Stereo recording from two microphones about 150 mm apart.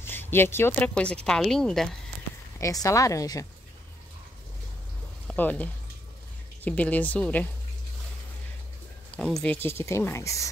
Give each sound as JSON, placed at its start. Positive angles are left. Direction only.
{"t": 0.0, "sound": "speech", "side_deg": 15}
{"t": 2.6, "sound": "a woman's voice", "side_deg": 20}
{"t": 5.3, "sound": "speech", "side_deg": 10}
{"t": 9.1, "sound": "speech", "side_deg": 5}